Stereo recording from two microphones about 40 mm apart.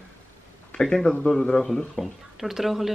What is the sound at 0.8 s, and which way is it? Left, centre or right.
Speech, centre.